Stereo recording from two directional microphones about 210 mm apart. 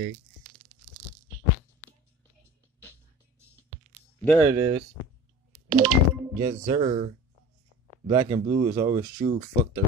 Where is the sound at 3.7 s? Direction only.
30° right (ahead or behind).